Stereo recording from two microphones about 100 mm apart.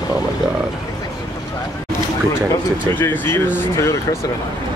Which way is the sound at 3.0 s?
20° left (ahead or behind).